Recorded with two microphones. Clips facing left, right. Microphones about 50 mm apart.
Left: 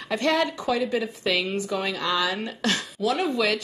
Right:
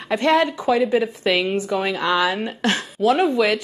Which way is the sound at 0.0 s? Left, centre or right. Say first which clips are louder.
Right 5 dB; right.